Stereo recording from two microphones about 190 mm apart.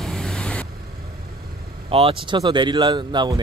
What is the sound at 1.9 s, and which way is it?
Speech, 30° right (ahead or behind).